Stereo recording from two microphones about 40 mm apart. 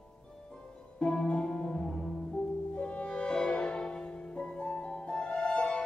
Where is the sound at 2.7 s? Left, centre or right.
Left.